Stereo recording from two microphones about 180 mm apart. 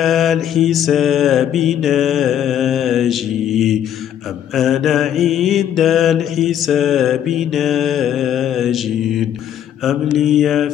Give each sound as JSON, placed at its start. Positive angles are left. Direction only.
{"t": 0.0, "sound": "mantra", "side_deg": 0}
{"t": 9.8, "sound": "mantra", "side_deg": 0}